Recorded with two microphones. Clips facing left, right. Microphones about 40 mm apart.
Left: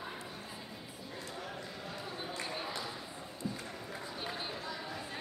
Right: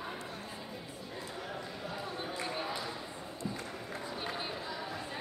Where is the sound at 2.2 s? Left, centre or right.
Centre.